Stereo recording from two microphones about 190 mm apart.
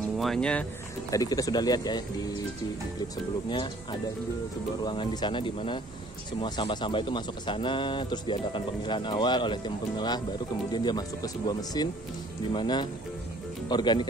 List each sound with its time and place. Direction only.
0.2 s speech: 5° left (ahead or behind)
1.1 s a man's voice: 20° left (ahead or behind)
3.4 s a man's voice: 25° left (ahead or behind)
4.8 s a man's voice: 25° left (ahead or behind)